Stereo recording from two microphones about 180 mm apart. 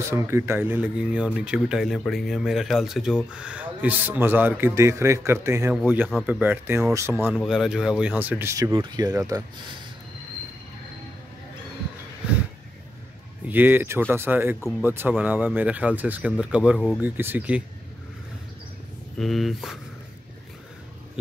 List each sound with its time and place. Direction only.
0.1 s speech: 15° right (ahead or behind)
7.3 s speech: centre (ahead or behind); by 9.4 s 20° right (ahead or behind)
13.5 s speech: 10° right (ahead or behind)
17.0 s speech: 10° right (ahead or behind)
19.1 s speech: centre (ahead or behind)